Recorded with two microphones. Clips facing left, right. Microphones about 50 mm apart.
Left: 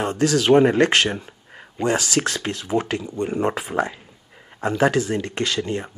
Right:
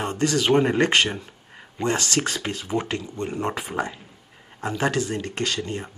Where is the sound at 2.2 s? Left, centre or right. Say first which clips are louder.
Left 2 dB; centre.